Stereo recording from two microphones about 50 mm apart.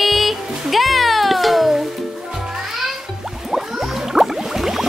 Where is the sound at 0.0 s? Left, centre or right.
Centre.